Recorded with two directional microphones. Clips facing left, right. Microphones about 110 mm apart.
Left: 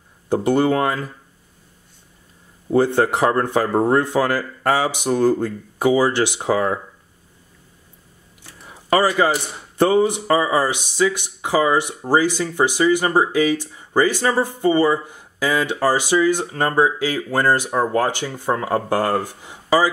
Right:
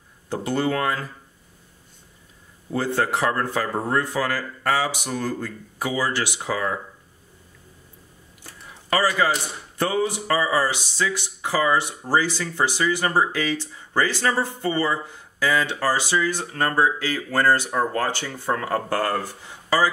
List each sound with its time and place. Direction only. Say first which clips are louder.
0.3 s speech: left 7 dB; 20° left (ahead or behind)
2.7 s speech: left 7 dB; 20° left (ahead or behind)
9.8 s speech: left 7 dB; 25° left (ahead or behind)